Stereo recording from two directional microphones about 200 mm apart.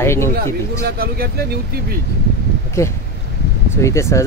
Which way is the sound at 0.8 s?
50° right (ahead or behind).